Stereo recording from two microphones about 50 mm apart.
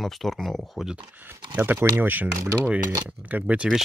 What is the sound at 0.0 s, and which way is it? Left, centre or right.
Speech, centre.